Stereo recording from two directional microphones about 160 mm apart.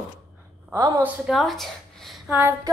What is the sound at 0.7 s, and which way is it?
Speech, 20° right (ahead or behind).